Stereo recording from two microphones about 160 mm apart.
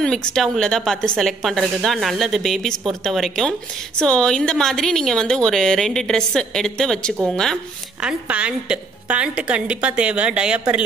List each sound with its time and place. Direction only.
0.0 s a woman's voice: 5° left (ahead or behind)